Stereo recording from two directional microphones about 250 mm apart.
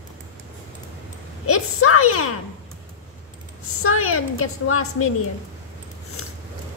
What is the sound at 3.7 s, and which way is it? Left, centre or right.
A woman's voice, left.